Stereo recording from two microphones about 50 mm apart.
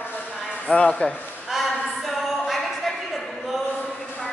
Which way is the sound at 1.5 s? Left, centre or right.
Centre.